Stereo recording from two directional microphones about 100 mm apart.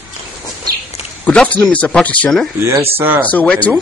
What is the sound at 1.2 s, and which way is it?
Speech, 10° left (ahead or behind).